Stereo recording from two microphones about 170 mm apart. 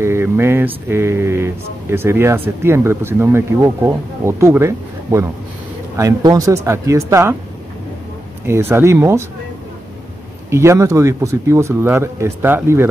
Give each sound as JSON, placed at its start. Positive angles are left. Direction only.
{"t": 0.0, "sound": "speech", "side_deg": -15}
{"t": 8.5, "sound": "speech", "side_deg": -15}
{"t": 10.5, "sound": "speech", "side_deg": -15}